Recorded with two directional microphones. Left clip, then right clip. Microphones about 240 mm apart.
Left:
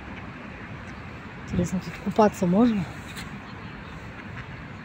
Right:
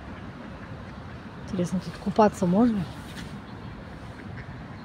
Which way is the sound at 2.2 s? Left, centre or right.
Centre.